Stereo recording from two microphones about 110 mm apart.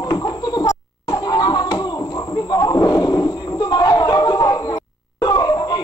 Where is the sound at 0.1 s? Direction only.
35° left (ahead or behind).